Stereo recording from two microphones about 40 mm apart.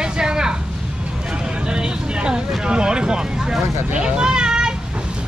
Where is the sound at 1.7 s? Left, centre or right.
Right.